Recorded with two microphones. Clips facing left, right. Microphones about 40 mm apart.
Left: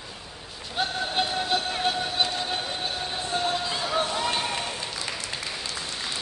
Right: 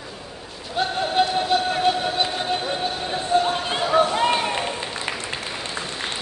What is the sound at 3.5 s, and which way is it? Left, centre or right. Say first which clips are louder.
Run: right 4 dB; right.